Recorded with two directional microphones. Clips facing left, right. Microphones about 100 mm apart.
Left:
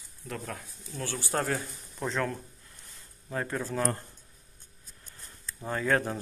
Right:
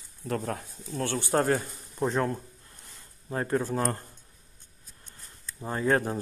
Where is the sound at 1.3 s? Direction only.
35° right (ahead or behind).